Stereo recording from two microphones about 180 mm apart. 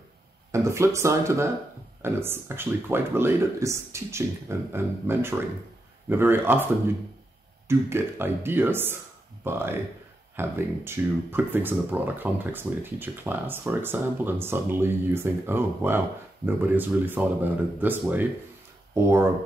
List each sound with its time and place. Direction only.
0.5 s speech: 15° right (ahead or behind)
7.6 s speech: 15° right (ahead or behind)